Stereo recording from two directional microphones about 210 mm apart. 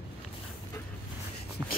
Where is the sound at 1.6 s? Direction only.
15° right (ahead or behind).